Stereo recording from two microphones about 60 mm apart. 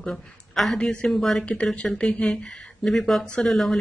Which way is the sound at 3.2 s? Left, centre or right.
Centre.